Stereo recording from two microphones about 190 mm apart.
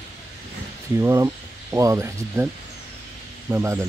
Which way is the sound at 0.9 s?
15° right (ahead or behind).